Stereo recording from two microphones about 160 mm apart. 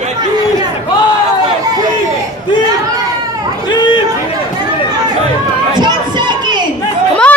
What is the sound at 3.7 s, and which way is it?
Chatter, 30° left (ahead or behind).